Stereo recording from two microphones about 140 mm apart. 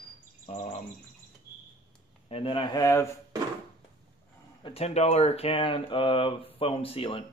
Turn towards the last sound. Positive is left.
turn(degrees=40)  # may be behind; listen again after turning